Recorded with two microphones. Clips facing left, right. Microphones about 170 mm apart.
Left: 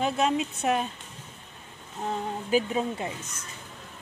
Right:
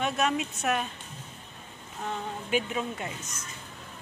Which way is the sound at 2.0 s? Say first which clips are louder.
Left 4 dB; 30° left (ahead or behind).